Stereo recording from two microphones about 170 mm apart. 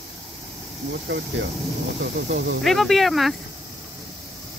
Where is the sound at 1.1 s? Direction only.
90° right.